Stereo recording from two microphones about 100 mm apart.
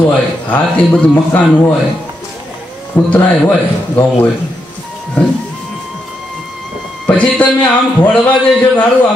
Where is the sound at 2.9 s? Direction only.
45° left (ahead or behind).